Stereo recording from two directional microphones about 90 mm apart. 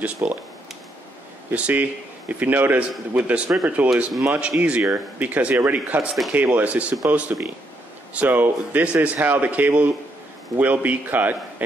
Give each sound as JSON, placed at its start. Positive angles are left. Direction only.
{"t": 0.0, "sound": "a man's voice", "side_deg": -20}
{"t": 1.5, "sound": "a man's voice", "side_deg": -20}
{"t": 6.0, "sound": "speech", "side_deg": 0}
{"t": 6.3, "sound": "a man's voice", "side_deg": -15}